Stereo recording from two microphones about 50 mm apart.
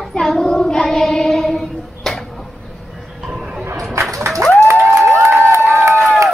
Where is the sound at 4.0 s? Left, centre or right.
Right.